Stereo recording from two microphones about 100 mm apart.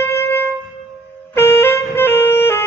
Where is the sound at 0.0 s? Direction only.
25° left (ahead or behind).